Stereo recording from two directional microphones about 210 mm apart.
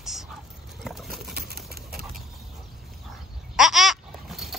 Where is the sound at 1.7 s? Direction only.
45° right (ahead or behind).